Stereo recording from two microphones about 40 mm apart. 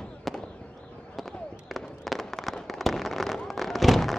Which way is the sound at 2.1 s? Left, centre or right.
Centre.